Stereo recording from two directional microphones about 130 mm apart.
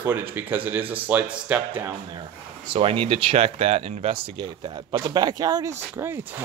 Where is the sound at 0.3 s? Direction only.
15° right (ahead or behind).